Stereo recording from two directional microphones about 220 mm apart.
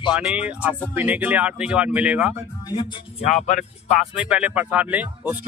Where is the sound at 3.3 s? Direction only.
35° left (ahead or behind).